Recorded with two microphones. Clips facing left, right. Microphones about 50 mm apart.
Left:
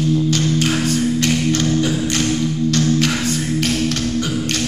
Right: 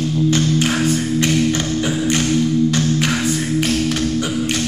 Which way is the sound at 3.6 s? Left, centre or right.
Centre.